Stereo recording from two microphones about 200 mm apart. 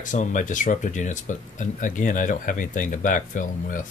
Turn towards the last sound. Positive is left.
turn(degrees=40)  # may be behind; listen again after turning